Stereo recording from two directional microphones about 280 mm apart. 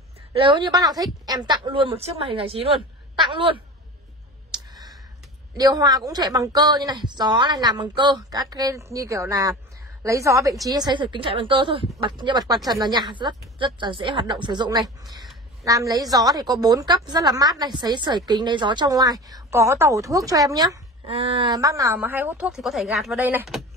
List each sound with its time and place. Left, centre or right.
0.3 s a woman's voice: centre
4.5 s clicking: centre
5.6 s a woman's voice: centre